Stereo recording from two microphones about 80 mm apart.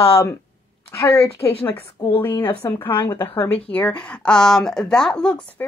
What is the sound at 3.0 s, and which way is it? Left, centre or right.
Speech, left.